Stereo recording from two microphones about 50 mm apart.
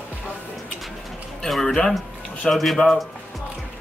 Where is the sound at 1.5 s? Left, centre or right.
Centre.